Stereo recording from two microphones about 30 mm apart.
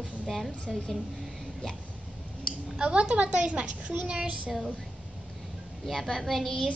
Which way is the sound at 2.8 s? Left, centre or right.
Right.